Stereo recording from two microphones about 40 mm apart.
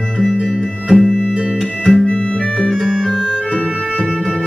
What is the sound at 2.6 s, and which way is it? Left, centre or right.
Music, centre.